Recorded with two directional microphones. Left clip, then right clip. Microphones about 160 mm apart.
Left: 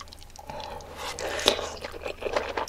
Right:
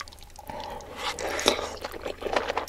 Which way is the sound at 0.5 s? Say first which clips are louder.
Right 1 dB; 15° right (ahead or behind).